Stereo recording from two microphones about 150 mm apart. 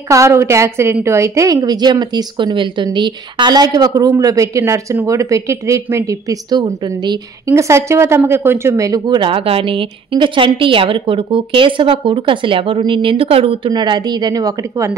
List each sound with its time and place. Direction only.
0.1 s a woman's voice: 20° right (ahead or behind)
7.5 s speech: 20° right (ahead or behind)